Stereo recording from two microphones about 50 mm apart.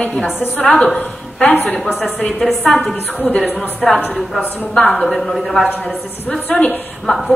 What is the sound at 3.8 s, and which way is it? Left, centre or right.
A woman's voice, centre.